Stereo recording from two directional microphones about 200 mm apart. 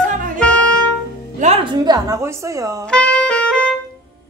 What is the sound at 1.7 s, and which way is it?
A woman's voice, 20° right (ahead or behind).